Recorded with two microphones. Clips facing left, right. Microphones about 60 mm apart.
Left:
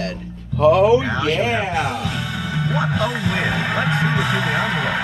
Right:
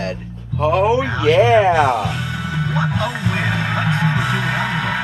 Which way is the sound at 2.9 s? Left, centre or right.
Right.